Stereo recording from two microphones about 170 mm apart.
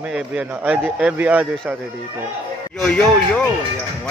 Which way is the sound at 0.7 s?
10° right (ahead or behind).